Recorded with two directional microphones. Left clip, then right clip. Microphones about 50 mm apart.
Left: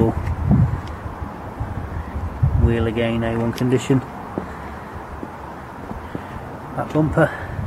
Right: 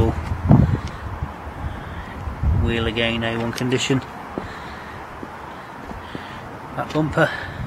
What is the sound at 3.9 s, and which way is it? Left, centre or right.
Speech, right.